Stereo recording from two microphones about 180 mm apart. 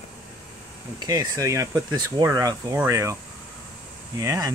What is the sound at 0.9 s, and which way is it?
Speech, 20° right (ahead or behind).